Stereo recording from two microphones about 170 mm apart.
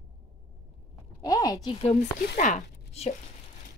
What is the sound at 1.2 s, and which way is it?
Speech, 20° left (ahead or behind).